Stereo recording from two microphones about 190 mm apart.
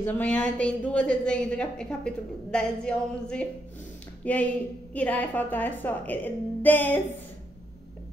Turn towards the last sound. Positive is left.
turn(degrees=10)  # may be behind; listen again after turning